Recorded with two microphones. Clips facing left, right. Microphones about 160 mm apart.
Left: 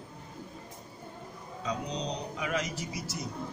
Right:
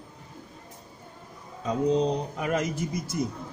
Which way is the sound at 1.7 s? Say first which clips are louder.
Right 11 dB; 50° right (ahead or behind).